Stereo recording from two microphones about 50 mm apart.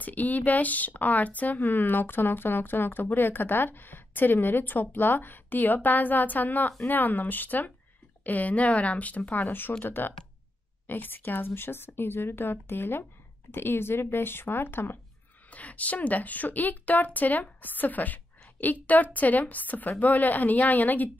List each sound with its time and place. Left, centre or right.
0.0 s speech: left
15.5 s speech: left